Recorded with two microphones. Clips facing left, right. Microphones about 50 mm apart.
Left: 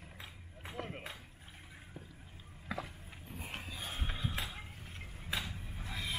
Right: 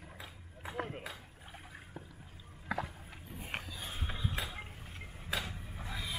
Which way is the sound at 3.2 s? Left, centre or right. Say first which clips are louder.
Right 3 dB; centre.